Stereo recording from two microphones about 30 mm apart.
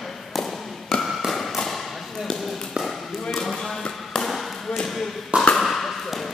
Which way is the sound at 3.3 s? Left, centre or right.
Centre.